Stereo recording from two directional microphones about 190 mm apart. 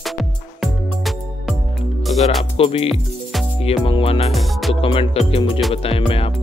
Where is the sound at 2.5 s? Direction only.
30° left (ahead or behind).